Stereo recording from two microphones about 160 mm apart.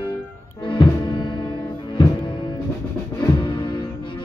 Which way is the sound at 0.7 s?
30° left (ahead or behind).